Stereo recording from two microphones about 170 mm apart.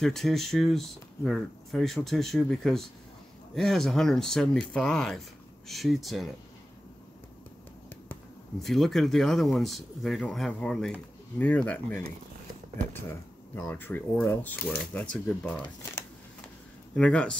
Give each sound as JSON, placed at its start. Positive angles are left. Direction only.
{"t": 0.0, "sound": "speech", "side_deg": 0}
{"t": 8.6, "sound": "speech", "side_deg": 0}
{"t": 13.7, "sound": "speech", "side_deg": 10}